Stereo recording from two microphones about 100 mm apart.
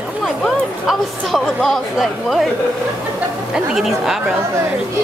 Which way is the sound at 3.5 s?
5° right (ahead or behind).